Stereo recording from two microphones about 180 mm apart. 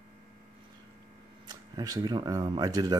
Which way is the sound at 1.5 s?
20° right (ahead or behind).